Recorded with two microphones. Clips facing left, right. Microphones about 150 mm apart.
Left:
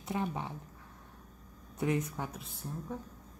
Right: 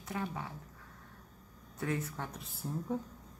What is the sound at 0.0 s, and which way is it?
Speech, 25° left (ahead or behind).